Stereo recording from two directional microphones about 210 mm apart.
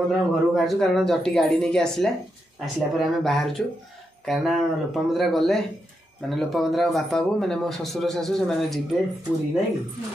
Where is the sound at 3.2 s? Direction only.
Centre (ahead or behind).